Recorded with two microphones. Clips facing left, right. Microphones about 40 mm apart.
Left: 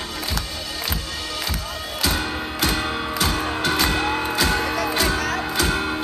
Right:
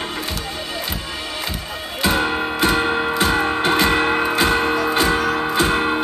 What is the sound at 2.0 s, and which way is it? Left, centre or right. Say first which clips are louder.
Music: right 6 dB; right.